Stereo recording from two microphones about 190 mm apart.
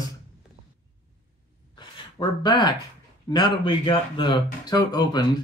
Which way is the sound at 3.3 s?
25° left (ahead or behind).